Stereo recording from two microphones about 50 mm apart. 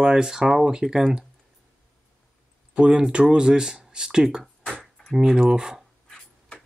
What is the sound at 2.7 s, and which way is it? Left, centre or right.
Speech, centre.